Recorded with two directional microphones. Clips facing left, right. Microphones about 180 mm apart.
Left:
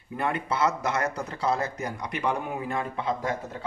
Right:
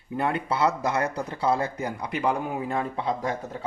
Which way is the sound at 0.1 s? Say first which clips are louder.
Right 2 dB; 30° right (ahead or behind).